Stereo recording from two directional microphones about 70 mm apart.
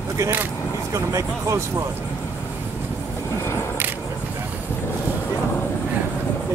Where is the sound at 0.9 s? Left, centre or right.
Right.